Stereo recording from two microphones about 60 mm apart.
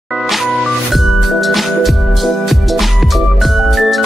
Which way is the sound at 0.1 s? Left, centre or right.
Centre.